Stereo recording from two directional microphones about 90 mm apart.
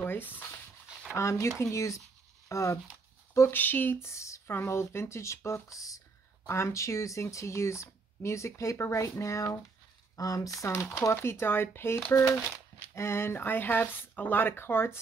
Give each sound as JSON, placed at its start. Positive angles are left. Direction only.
{"t": 0.0, "sound": "a sound", "side_deg": 20}
{"t": 1.1, "sound": "speech", "side_deg": 35}
{"t": 3.3, "sound": "speech", "side_deg": 25}